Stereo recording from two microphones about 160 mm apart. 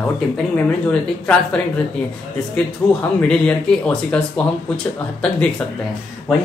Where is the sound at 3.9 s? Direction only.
5° left (ahead or behind).